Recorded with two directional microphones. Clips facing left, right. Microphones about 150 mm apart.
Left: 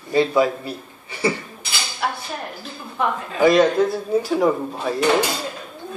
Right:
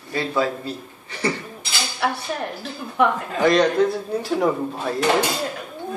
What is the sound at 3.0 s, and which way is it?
Speech, 65° right (ahead or behind).